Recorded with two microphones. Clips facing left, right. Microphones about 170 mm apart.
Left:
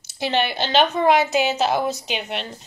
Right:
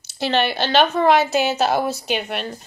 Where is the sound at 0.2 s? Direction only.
15° left (ahead or behind).